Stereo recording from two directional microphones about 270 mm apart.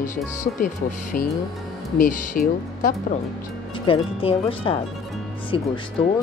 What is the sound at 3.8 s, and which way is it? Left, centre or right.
Speech, centre.